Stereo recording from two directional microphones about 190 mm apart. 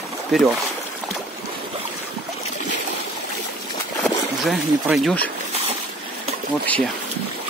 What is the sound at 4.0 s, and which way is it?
Speech, centre (ahead or behind).